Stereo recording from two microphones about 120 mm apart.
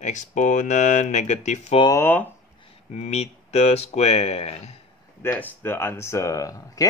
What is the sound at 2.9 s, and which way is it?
Speech, 70° left (ahead or behind).